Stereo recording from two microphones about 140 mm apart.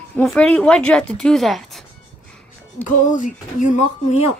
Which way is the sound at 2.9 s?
65° left (ahead or behind).